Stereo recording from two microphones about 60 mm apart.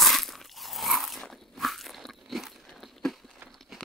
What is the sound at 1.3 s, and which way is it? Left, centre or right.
Crunch, centre.